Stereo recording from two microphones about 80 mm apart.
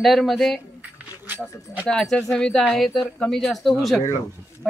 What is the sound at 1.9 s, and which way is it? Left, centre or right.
Speech, centre.